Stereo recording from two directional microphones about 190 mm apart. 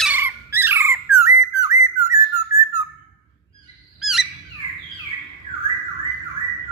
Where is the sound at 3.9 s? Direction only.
Centre (ahead or behind).